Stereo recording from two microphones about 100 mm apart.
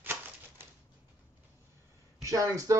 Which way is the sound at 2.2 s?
35° right (ahead or behind).